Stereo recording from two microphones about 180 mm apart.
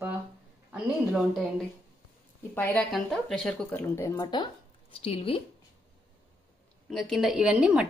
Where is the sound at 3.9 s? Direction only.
15° left (ahead or behind); by 5.4 s 30° left (ahead or behind).